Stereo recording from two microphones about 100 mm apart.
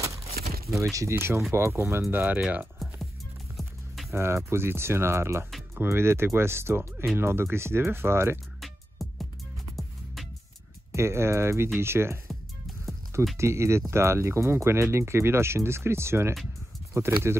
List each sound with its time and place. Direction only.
0.9 s speech: 25° right (ahead or behind)
3.5 s music: centre (ahead or behind)
4.1 s speech: 25° right (ahead or behind)
8.5 s music: centre (ahead or behind)
10.9 s speech: 25° right (ahead or behind)
12.3 s music: centre (ahead or behind)
13.4 s speech: 30° right (ahead or behind)